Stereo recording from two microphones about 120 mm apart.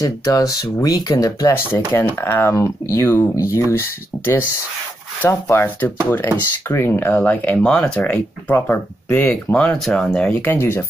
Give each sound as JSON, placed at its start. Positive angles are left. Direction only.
{"t": 0.0, "sound": "speech", "side_deg": 30}
{"t": 1.7, "sound": "speech", "side_deg": 20}